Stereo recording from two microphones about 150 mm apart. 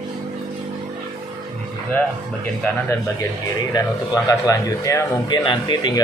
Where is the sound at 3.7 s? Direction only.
25° left (ahead or behind).